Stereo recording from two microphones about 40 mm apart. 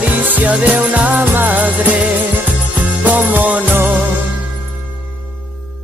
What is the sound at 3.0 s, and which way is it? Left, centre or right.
Music, right.